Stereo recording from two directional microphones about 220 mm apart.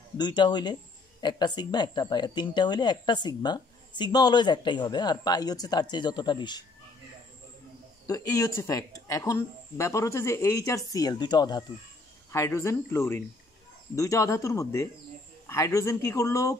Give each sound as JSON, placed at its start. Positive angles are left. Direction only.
{"t": 0.2, "sound": "speech", "side_deg": 20}
{"t": 8.1, "sound": "speech", "side_deg": 15}